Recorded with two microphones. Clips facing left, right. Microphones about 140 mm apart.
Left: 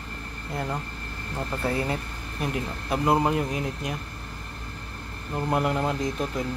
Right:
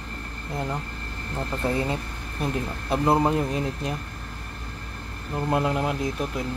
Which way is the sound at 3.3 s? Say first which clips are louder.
Right 2 dB; 30° right (ahead or behind).